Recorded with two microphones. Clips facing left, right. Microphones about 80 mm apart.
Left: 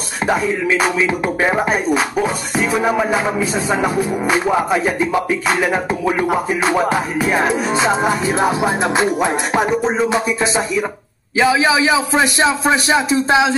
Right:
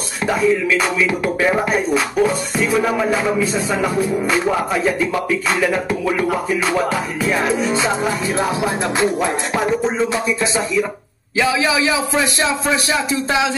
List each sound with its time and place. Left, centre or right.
0.3 s music: left